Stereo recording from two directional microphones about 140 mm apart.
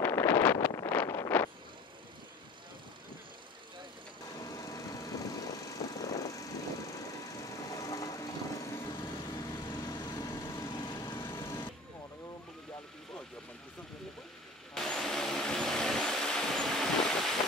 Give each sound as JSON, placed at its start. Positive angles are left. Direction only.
{"t": 0.0, "sound": "wind noise", "side_deg": 15}
{"t": 4.4, "sound": "vehicle", "side_deg": 25}
{"t": 14.7, "sound": "vehicle", "side_deg": 5}